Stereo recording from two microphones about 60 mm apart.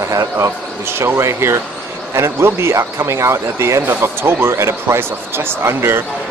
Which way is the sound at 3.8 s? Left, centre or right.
Right.